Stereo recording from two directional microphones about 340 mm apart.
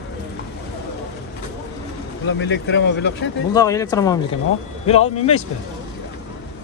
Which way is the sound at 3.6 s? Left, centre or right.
Centre.